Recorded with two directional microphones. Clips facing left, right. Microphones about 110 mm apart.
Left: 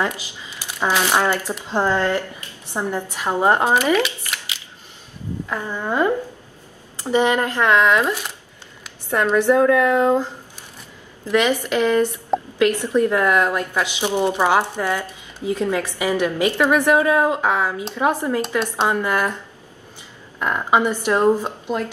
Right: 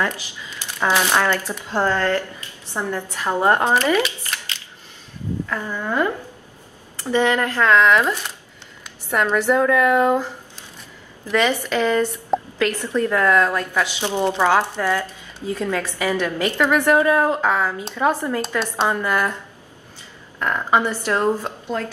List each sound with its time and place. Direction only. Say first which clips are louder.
0.0 s a woman's voice: even; 20° left (ahead or behind)
4.3 s a sound: even; 15° left (ahead or behind)
5.5 s a woman's voice: left 2 dB; 15° left (ahead or behind)